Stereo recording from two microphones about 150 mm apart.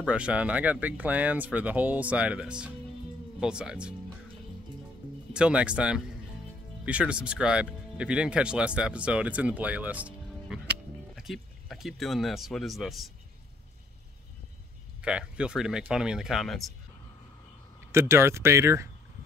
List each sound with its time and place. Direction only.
0.0 s speech: 5° right (ahead or behind)
5.3 s speech: 5° right (ahead or behind)
15.0 s speech: 5° right (ahead or behind)
17.9 s speech: 15° right (ahead or behind)